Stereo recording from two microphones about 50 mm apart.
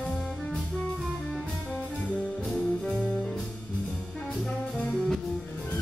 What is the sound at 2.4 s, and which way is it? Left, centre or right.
Music, centre.